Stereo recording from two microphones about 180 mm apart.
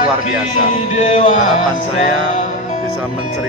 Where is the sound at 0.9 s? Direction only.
45° left (ahead or behind).